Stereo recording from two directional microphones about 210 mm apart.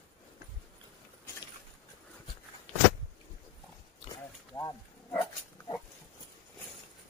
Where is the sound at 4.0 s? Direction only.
15° left (ahead or behind).